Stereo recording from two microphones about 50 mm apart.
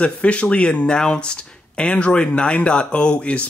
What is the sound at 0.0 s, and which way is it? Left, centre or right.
Speech, left.